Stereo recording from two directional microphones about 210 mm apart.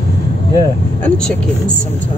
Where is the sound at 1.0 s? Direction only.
5° left (ahead or behind).